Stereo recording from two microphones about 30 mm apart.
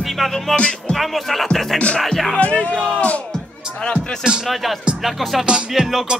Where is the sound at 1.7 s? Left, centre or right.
Left.